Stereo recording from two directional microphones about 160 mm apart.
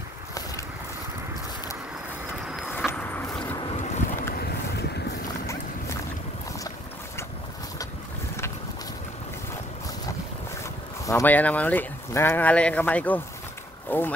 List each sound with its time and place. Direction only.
2.9 s a sound: 10° left (ahead or behind)
3.9 s boat: 65° left (ahead or behind)
10.6 s speech: 20° left (ahead or behind)